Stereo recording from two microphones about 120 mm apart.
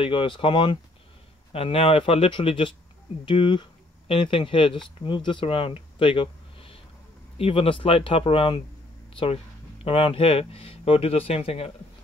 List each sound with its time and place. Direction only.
0.0 s speech: 45° left (ahead or behind)